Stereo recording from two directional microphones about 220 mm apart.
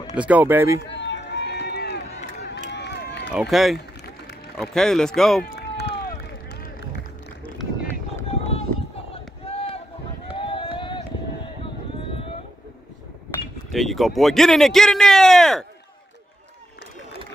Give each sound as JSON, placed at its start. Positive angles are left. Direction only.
{"t": 0.1, "sound": "speech", "side_deg": -5}
{"t": 0.7, "sound": "run", "side_deg": 55}
{"t": 3.3, "sound": "a man's voice", "side_deg": -5}
{"t": 5.4, "sound": "run", "side_deg": 45}
{"t": 8.3, "sound": "run", "side_deg": 25}
{"t": 13.7, "sound": "a man's voice", "side_deg": 0}